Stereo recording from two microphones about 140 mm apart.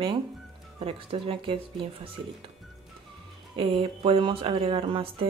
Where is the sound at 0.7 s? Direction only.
40° right (ahead or behind).